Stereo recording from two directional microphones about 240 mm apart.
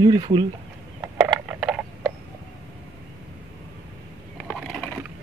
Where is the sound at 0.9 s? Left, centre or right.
Centre.